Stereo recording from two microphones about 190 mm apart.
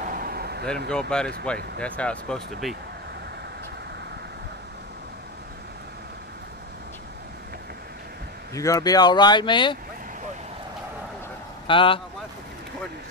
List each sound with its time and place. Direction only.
0.0 s a sound: 50° right (ahead or behind)
0.8 s speech: 5° left (ahead or behind)
8.5 s speech: 20° left (ahead or behind)
11.6 s speech: 25° left (ahead or behind)